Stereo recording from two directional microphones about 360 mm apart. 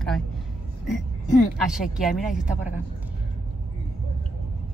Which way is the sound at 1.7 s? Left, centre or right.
Centre.